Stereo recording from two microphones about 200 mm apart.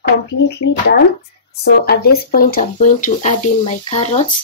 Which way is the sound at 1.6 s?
50° left (ahead or behind).